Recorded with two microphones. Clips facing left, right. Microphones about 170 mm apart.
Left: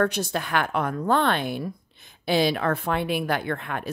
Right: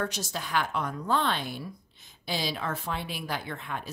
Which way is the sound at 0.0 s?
60° left (ahead or behind).